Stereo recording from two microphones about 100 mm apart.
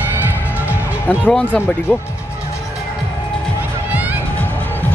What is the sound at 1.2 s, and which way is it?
Speech, 10° left (ahead or behind).